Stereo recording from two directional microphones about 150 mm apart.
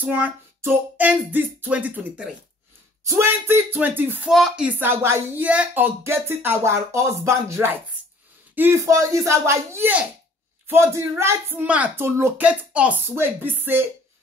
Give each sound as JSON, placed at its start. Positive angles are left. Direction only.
{"t": 0.0, "sound": "speech", "side_deg": -10}
{"t": 4.3, "sound": "speech", "side_deg": 0}